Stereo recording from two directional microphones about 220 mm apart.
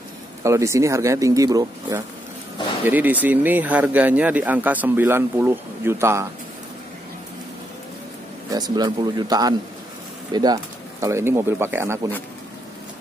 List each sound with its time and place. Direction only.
0.4 s speech: 15° right (ahead or behind)
8.5 s speech: 20° right (ahead or behind)